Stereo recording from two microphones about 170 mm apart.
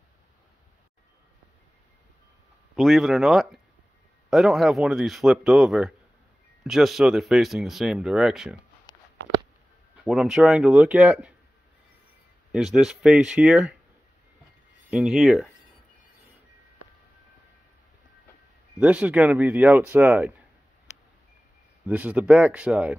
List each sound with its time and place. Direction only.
2.7 s speech: centre (ahead or behind)
8.9 s a sound: 25° left (ahead or behind)
10.0 s speech: 5° right (ahead or behind)
12.5 s speech: 5° right (ahead or behind)
14.9 s speech: 5° right (ahead or behind)
18.8 s speech: 5° right (ahead or behind)
21.8 s speech: 10° right (ahead or behind)